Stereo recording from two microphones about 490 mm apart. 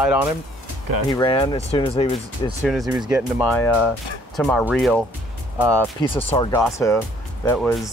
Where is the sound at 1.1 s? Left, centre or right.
Centre.